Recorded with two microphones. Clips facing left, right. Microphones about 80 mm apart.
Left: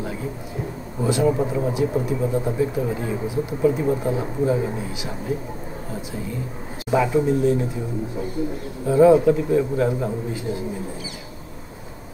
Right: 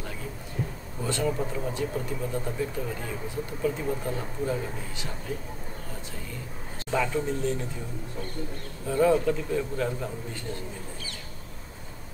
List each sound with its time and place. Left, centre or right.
1.0 s speech: centre
1.3 s speech: left
2.2 s speech: centre
6.9 s speech: centre
8.8 s speech: centre